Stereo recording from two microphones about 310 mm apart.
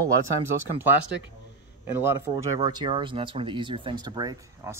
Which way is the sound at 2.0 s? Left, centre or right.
Centre.